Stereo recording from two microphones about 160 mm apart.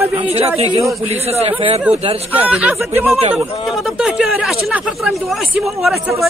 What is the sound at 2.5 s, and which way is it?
Speech, 10° right (ahead or behind).